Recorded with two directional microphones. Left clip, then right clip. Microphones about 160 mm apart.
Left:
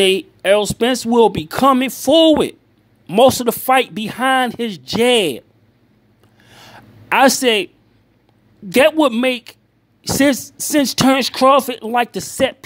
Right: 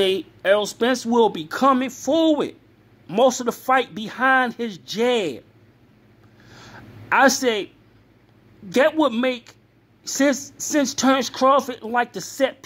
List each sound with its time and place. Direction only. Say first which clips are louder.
0.0 s speech: left 6 dB; 35° left (ahead or behind)
6.6 s a sound: left 2 dB; 45° left (ahead or behind)
8.6 s speech: left 6 dB; 40° left (ahead or behind)